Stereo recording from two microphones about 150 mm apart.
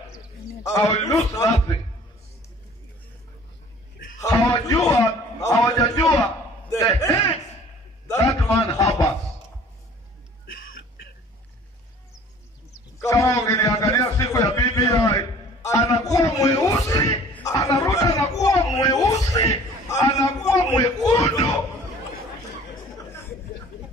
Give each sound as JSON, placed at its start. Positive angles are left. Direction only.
{"t": 0.7, "sound": "a man's voice", "side_deg": 25}
{"t": 4.2, "sound": "a man's voice", "side_deg": 20}
{"t": 8.4, "sound": "chuckle", "side_deg": 20}
{"t": 12.7, "sound": "a sound", "side_deg": 20}
{"t": 17.3, "sound": "speech", "side_deg": 20}